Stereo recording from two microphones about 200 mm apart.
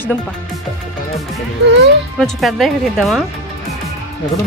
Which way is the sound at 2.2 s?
Centre (ahead or behind).